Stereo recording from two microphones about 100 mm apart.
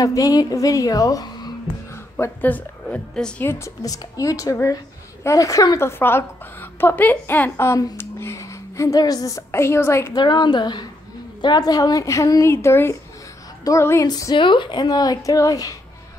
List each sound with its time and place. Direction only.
0.0 s a woman's voice: 35° left (ahead or behind)
2.1 s a woman's voice: 20° left (ahead or behind)
3.4 s a woman's voice: 30° left (ahead or behind)
5.9 s a woman's voice: 25° left (ahead or behind)
10.1 s a woman's voice: 50° left (ahead or behind); by 14.0 s 30° left (ahead or behind)
14.0 s a woman's voice: 40° left (ahead or behind)
14.4 s a woman's voice: 55° left (ahead or behind); by 15.7 s 35° left (ahead or behind)